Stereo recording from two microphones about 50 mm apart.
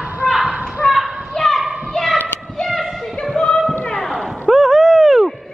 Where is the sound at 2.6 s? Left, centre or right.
Centre.